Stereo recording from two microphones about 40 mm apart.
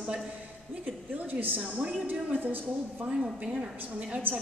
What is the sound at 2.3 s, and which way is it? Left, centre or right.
Speech, right.